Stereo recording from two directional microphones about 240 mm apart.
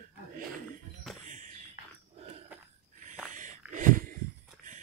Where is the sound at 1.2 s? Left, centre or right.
Right.